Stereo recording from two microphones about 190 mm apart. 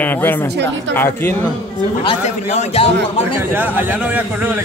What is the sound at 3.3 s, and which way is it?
Speech, 10° right (ahead or behind).